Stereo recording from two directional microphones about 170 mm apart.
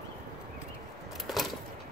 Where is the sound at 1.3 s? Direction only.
Centre (ahead or behind).